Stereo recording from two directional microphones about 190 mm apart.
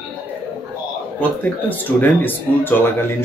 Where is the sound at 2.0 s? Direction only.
10° left (ahead or behind).